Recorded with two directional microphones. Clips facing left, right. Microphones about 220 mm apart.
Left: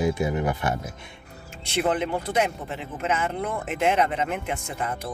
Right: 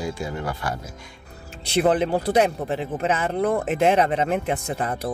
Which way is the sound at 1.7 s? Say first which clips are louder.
Right 5 dB; 35° right (ahead or behind).